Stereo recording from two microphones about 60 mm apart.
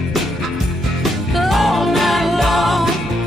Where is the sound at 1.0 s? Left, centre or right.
Centre.